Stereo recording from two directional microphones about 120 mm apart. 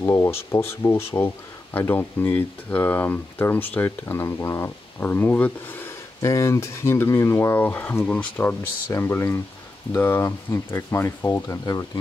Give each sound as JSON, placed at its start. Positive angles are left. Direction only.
{"t": 0.0, "sound": "speech", "side_deg": 20}